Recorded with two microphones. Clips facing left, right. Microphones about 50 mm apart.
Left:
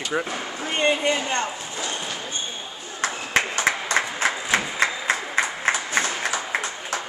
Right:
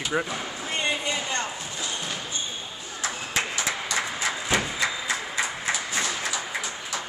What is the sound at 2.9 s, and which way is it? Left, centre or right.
Applause, left.